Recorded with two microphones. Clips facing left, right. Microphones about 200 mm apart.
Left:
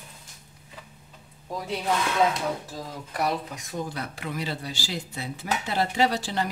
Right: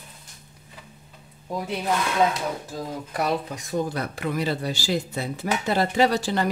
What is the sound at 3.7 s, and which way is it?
Speech, 50° right (ahead or behind).